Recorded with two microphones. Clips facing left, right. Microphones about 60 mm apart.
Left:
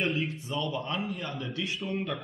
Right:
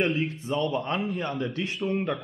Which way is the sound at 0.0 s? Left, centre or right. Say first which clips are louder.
Right 4 dB; right.